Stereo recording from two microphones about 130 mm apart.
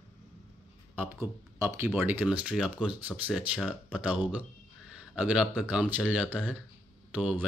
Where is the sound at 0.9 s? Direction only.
20° right (ahead or behind).